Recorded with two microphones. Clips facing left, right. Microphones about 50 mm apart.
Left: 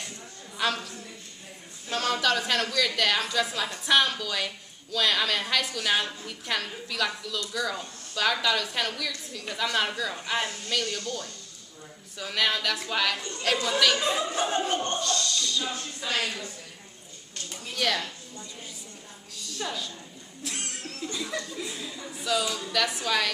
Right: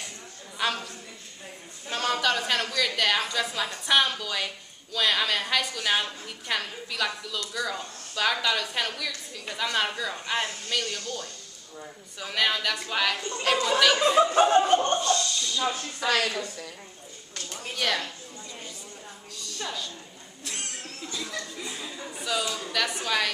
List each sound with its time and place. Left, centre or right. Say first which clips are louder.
0.6 s a sound: even; centre
1.9 s a woman's voice: even; centre
13.9 s chuckle: right 7 dB; right
15.0 s speech: right 3 dB; right
16.0 s a woman's voice: right 6 dB; right
17.7 s speech: even; centre
19.3 s a sound: left 1 dB; centre
21.2 s speech: left 1 dB; centre
21.5 s a woman's voice: left 1 dB; centre